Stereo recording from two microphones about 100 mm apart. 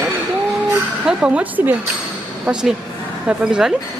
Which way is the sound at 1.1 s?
10° right (ahead or behind).